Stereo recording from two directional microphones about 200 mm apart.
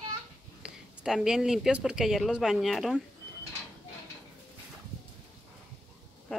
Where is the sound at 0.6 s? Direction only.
Centre (ahead or behind).